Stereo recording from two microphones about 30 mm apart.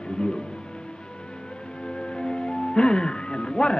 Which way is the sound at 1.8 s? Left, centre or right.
Left.